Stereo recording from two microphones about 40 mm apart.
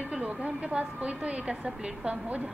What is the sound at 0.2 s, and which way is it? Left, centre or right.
A woman's voice, right.